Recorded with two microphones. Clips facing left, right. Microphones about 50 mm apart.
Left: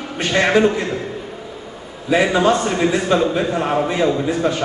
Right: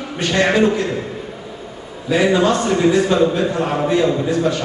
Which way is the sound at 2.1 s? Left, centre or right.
Left.